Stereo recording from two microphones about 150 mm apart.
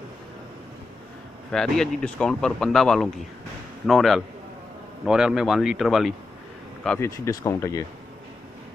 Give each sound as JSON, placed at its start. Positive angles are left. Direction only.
{"t": 1.5, "sound": "speech", "side_deg": 5}
{"t": 7.0, "sound": "speech", "side_deg": 20}